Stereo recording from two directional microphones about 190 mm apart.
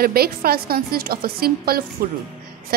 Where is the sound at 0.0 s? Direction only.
55° right (ahead or behind).